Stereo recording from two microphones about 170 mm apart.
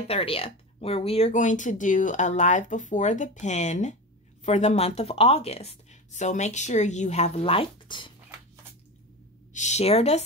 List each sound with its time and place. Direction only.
0.1 s a woman's voice: 35° left (ahead or behind)
9.5 s a woman's voice: 45° left (ahead or behind)